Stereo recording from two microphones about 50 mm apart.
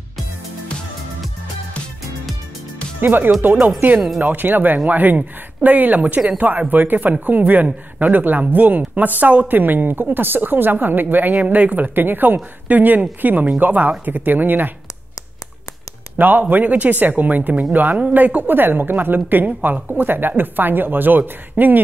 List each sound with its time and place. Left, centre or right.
3.0 s a woman's voice: right
16.2 s a woman's voice: right